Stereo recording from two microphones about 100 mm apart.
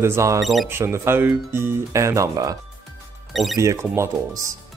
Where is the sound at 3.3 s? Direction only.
Centre (ahead or behind).